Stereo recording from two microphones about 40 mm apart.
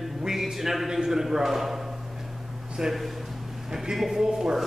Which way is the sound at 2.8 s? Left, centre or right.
Centre.